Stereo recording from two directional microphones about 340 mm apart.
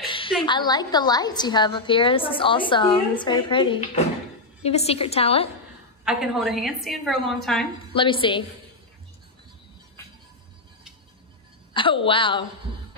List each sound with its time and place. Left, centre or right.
0.0 s a sound: centre
0.5 s a woman's voice: centre
6.0 s a woman's voice: centre
7.9 s a woman's voice: centre
11.7 s a woman's voice: centre